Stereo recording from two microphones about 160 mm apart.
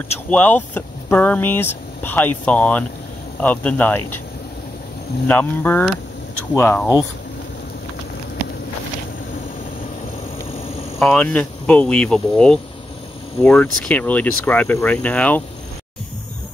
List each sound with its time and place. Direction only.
0.3 s speech: 10° left (ahead or behind)
5.3 s speech: 10° left (ahead or behind)
11.0 s speech: 5° left (ahead or behind)